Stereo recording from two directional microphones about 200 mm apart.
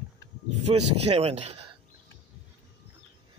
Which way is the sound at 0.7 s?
30° right (ahead or behind).